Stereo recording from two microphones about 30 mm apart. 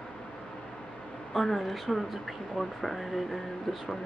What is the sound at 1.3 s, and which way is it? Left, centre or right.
Speech, centre.